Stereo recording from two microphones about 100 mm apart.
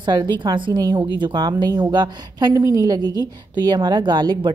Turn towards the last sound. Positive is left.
turn(degrees=-50)  # may be behind; listen again after turning